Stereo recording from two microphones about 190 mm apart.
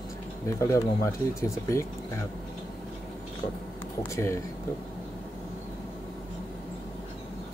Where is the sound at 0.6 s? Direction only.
15° left (ahead or behind).